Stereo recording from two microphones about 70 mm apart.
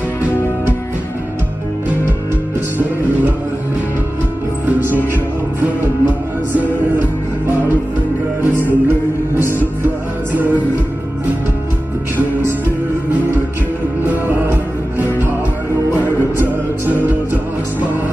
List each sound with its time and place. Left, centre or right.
4.6 s music: right
10.3 s music: right
14.0 s music: right
16.8 s music: right